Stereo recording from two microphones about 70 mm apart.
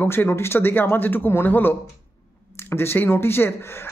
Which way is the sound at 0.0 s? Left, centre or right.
Left.